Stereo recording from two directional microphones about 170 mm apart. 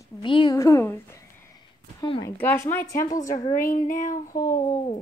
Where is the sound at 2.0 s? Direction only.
30° left (ahead or behind).